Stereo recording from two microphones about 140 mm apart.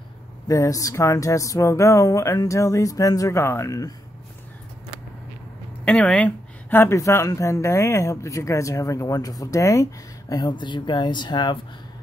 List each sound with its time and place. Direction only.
0.5 s speech: 25° left (ahead or behind)
5.9 s speech: 10° left (ahead or behind)
10.3 s speech: 30° left (ahead or behind)